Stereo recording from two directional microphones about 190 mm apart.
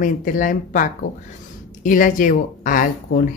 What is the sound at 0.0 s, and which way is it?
A woman's voice, 45° left (ahead or behind).